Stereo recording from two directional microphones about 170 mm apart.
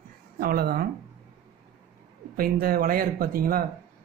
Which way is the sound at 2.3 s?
60° right (ahead or behind).